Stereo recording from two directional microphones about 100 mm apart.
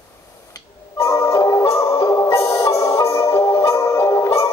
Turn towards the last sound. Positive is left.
turn(degrees=30)  # may be behind; listen again after turning